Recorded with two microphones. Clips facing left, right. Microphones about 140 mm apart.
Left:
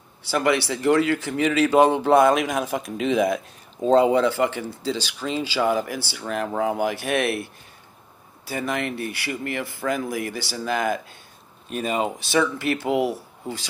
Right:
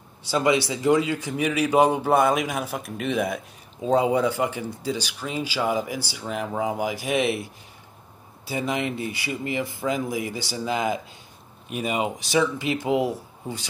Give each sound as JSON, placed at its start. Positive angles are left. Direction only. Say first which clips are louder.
{"t": 0.2, "sound": "speech", "louder": "even", "side_deg": -20}
{"t": 3.0, "sound": "speech", "louder": "left 4 dB", "side_deg": 90}
{"t": 3.3, "sound": "speech", "louder": "left 5 dB", "side_deg": -5}
{"t": 7.0, "sound": "speech", "louder": "even", "side_deg": 65}
{"t": 8.5, "sound": "speech", "louder": "even", "side_deg": -20}